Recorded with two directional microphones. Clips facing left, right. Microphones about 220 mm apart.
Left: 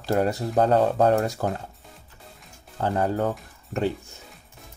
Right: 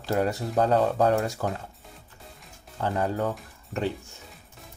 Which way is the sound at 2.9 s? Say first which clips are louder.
Left 3 dB; 45° left (ahead or behind).